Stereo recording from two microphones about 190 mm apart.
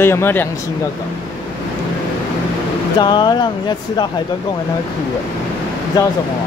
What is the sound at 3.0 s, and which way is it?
Speech, 25° left (ahead or behind).